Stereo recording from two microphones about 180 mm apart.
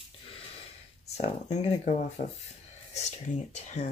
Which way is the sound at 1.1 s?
40° left (ahead or behind).